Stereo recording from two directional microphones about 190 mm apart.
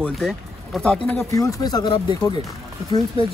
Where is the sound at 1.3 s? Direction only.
20° left (ahead or behind).